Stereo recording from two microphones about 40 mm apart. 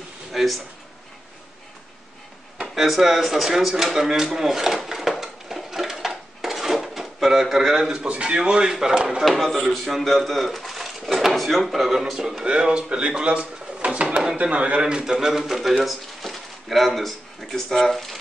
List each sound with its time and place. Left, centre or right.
0.3 s a sound: centre
2.7 s a sound: centre
8.1 s a man's voice: right
9.2 s speech: centre
11.7 s a man's voice: centre
12.4 s speech: right
14.8 s speech: centre
15.1 s a man's voice: centre